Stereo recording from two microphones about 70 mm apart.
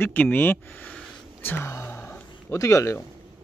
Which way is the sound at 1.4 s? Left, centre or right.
Left.